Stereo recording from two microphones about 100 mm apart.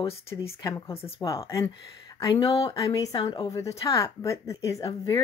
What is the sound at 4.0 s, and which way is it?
Speech, 30° left (ahead or behind).